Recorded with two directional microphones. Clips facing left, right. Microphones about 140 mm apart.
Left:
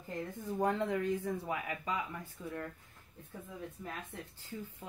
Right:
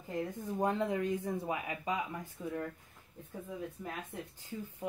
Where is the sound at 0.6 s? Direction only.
20° right (ahead or behind).